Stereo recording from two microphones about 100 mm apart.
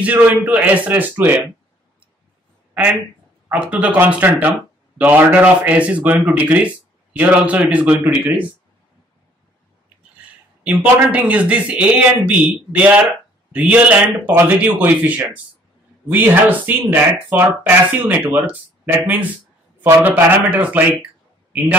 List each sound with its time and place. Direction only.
0.0 s speech: 15° right (ahead or behind)
3.5 s speech: 10° right (ahead or behind)
10.6 s speech: 15° right (ahead or behind)